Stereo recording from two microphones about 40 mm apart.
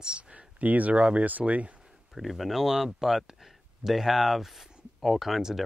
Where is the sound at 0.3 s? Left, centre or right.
Right.